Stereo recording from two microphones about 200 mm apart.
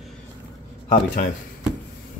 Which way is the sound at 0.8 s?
45° left (ahead or behind).